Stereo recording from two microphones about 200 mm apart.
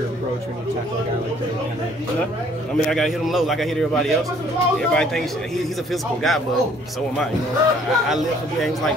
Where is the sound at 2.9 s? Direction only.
Centre (ahead or behind).